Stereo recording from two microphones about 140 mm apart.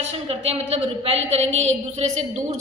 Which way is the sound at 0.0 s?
45° right (ahead or behind).